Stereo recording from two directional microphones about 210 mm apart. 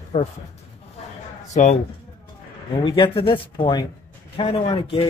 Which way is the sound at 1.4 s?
35° left (ahead or behind).